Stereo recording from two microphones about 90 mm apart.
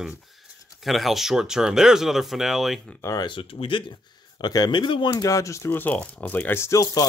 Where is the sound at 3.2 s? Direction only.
70° left (ahead or behind).